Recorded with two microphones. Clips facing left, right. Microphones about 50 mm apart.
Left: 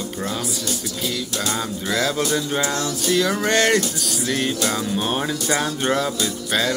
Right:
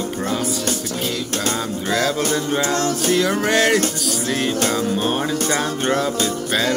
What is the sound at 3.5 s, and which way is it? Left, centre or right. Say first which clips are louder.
Music: right 1 dB; centre.